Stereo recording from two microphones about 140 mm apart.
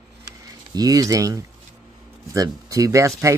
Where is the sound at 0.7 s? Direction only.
25° right (ahead or behind).